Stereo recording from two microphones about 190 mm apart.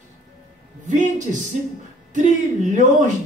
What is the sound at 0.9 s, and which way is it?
Speech, 40° right (ahead or behind).